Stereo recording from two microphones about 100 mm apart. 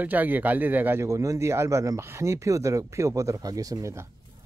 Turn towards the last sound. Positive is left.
turn(degrees=-35)  # may be behind; listen again after turning